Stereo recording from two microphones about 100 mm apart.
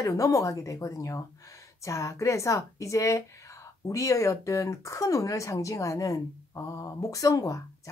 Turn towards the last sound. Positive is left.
turn(degrees=35)  # may be behind; listen again after turning